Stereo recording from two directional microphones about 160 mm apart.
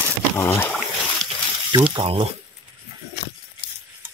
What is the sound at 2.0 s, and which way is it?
Speech, 35° right (ahead or behind).